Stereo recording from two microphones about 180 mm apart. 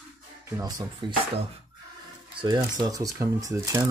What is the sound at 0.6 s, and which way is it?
Speech, 25° right (ahead or behind).